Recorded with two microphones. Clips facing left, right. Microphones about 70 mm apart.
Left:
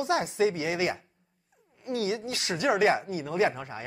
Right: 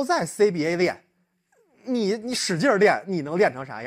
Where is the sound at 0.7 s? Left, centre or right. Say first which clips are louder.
Right 6 dB; right.